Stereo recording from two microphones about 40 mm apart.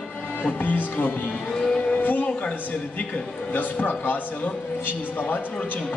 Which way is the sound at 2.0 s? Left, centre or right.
Left.